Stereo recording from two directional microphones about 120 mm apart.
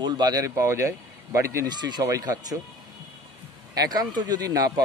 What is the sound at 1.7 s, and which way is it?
Speech, 35° right (ahead or behind).